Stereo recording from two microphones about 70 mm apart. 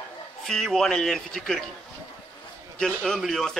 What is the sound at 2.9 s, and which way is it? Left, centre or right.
Speech, centre.